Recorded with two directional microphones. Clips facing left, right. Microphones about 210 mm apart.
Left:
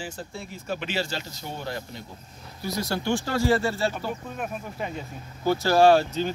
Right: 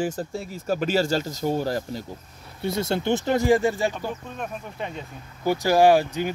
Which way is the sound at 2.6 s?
25° right (ahead or behind).